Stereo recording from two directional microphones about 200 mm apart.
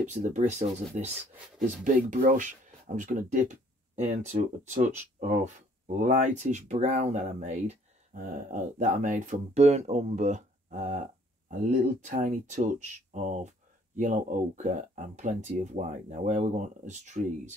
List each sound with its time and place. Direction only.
0.0 s speech: 35° right (ahead or behind)